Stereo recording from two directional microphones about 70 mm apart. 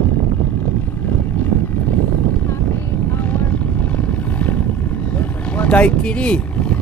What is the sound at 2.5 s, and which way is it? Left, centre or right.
Vehicle, left.